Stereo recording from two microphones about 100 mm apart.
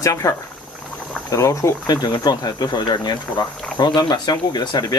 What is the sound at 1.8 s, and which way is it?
Speech, 45° left (ahead or behind).